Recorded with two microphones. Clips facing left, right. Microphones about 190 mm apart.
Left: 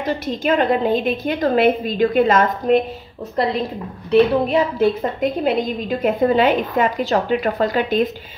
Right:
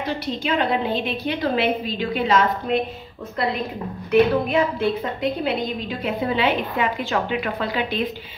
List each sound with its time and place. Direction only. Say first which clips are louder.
0.0 s a woman's voice: left 4 dB; 45° left (ahead or behind)
4.1 s a woman's voice: left 3 dB; 40° left (ahead or behind)